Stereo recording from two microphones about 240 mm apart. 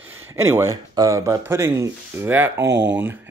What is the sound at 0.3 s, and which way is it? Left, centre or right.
Speech, centre.